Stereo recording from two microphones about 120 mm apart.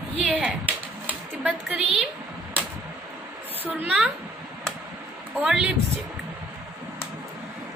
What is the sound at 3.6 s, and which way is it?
Speech, 10° right (ahead or behind).